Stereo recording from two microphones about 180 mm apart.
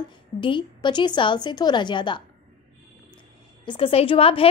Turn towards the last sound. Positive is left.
turn(degrees=30)  # may be behind; listen again after turning